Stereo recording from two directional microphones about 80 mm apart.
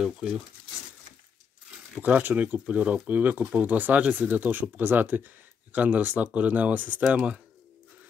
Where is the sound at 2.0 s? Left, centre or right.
Centre.